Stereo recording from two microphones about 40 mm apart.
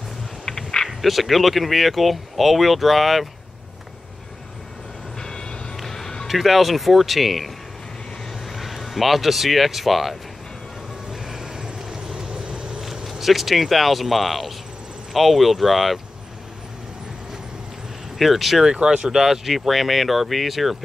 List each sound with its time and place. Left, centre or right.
0.5 s a sound: centre
0.8 s speech: centre
5.2 s vehicle: centre
5.8 s music: centre
6.2 s speech: centre
11.1 s vehicle: centre
12.8 s a sound: centre
13.2 s speech: centre
18.1 s speech: centre
18.7 s speech: right
19.2 s speech: centre